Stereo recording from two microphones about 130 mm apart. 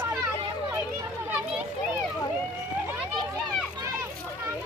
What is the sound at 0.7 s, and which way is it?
Children playing, 15° right (ahead or behind).